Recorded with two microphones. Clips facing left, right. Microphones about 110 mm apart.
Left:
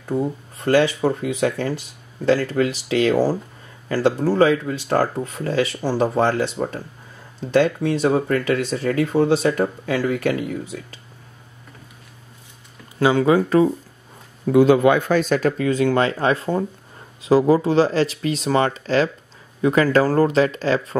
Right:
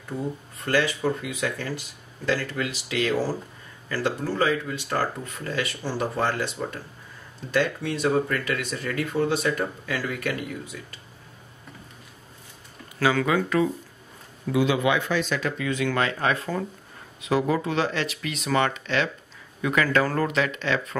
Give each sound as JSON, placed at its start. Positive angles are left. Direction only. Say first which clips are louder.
{"t": 0.1, "sound": "speech", "louder": "left 8 dB", "side_deg": 30}
{"t": 5.4, "sound": "speech", "louder": "left 8 dB", "side_deg": 30}
{"t": 8.1, "sound": "speech", "louder": "left 5 dB", "side_deg": 30}
{"t": 13.0, "sound": "speech", "louder": "left 6 dB", "side_deg": 25}